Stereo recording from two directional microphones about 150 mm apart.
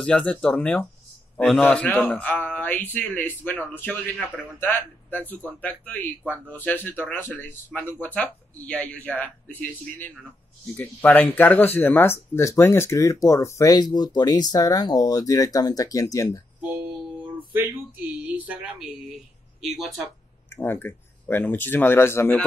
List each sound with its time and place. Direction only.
0.0 s speech: 10° left (ahead or behind)
17.6 s speech: 10° right (ahead or behind)
20.5 s speech: 15° left (ahead or behind)